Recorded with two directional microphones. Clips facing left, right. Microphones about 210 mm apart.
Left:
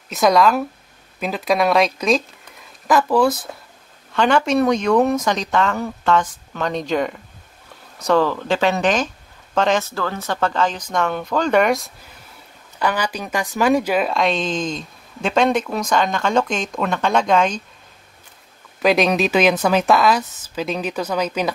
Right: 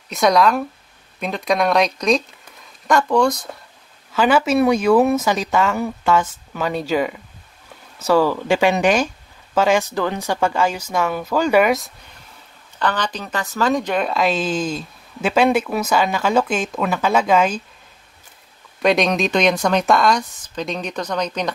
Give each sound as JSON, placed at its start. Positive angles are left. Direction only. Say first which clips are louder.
{"t": 0.1, "sound": "speech", "louder": "left 1 dB", "side_deg": 0}
{"t": 4.1, "sound": "speech", "louder": "right 1 dB", "side_deg": -5}
{"t": 12.7, "sound": "speech", "louder": "left 1 dB", "side_deg": 10}
{"t": 18.8, "sound": "speech", "louder": "left 1 dB", "side_deg": 0}